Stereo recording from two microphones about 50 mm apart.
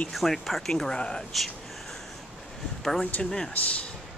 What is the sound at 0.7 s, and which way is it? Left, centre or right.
Speech, centre.